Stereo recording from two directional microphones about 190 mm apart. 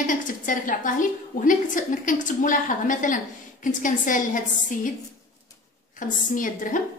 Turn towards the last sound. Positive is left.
turn(degrees=45)  # may be behind; listen again after turning